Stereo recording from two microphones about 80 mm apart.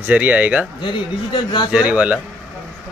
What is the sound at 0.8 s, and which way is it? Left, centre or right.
Speech, left.